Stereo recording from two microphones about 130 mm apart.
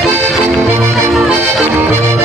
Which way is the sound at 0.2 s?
20° right (ahead or behind).